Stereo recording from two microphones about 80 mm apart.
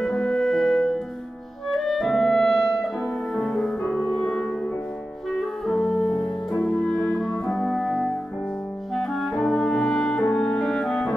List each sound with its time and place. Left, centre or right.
0.0 s music: centre
1.7 s clarinet: centre
5.7 s music: centre
8.9 s clarinet: centre